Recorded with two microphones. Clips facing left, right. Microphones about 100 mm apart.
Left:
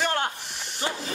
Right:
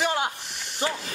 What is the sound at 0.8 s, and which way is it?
Speech, 25° right (ahead or behind).